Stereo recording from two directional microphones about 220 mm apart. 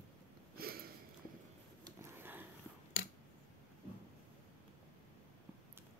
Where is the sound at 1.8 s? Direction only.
10° right (ahead or behind).